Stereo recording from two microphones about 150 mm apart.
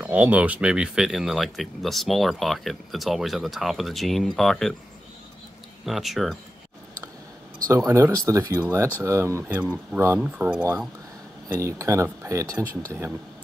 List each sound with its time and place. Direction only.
0.0 s speech: 10° right (ahead or behind)
5.9 s speech: centre (ahead or behind)
7.6 s speech: 20° right (ahead or behind)
11.4 s speech: 20° right (ahead or behind)